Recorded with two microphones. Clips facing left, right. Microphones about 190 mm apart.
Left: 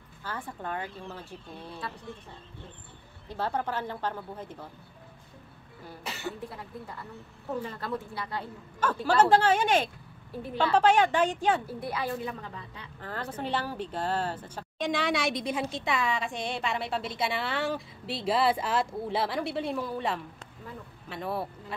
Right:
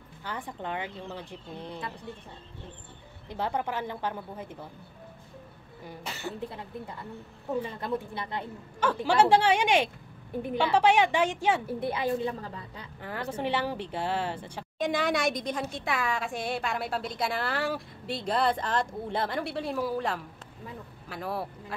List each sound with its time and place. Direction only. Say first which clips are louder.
0.2 s speech: right 1 dB; 15° right (ahead or behind)
3.3 s speech: even; 15° right (ahead or behind)
7.6 s a woman's voice: right 2 dB; 20° right (ahead or behind)
11.6 s a woman's voice: right 4 dB; 25° right (ahead or behind)
13.0 s a woman's voice: right 3 dB; 15° right (ahead or behind)